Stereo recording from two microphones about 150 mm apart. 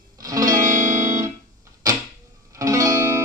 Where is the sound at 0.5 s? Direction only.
60° right (ahead or behind).